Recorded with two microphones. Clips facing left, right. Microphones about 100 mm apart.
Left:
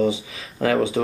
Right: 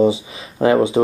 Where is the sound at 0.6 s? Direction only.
25° right (ahead or behind).